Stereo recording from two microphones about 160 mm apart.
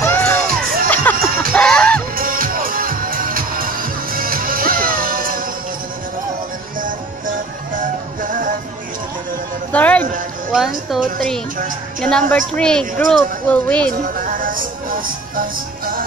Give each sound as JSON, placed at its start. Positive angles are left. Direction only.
{"t": 0.0, "sound": "music", "side_deg": 15}
{"t": 0.5, "sound": "music", "side_deg": -65}
{"t": 0.8, "sound": "music", "side_deg": 10}
{"t": 2.1, "sound": "music", "side_deg": -60}
{"t": 8.2, "sound": "music", "side_deg": -55}
{"t": 9.7, "sound": "a sound", "side_deg": 10}
{"t": 12.0, "sound": "a woman's voice", "side_deg": 5}
{"t": 14.2, "sound": "music", "side_deg": -60}